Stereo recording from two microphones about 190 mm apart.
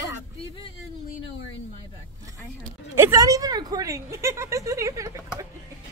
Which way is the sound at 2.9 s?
15° right (ahead or behind).